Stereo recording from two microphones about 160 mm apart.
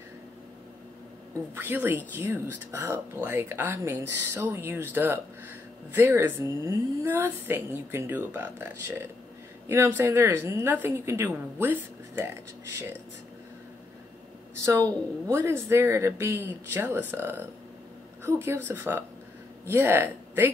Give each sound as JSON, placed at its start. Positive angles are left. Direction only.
{"t": 1.5, "sound": "a woman's voice", "side_deg": -15}
{"t": 14.6, "sound": "a woman's voice", "side_deg": -15}